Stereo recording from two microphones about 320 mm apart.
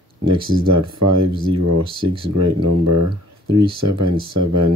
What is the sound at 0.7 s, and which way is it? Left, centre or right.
Speech, right.